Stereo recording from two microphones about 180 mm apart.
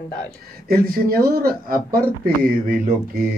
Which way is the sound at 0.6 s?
55° right (ahead or behind).